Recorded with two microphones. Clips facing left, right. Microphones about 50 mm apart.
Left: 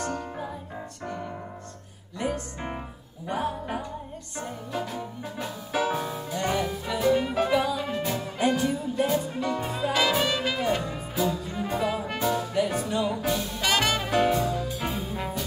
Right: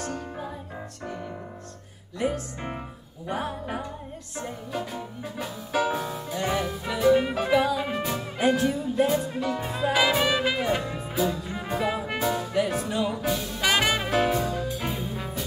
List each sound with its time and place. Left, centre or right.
0.0 s music: centre
2.1 s music: centre
4.4 s music: centre
7.1 s music: centre
7.6 s music: centre
8.0 s music: centre
13.7 s music: centre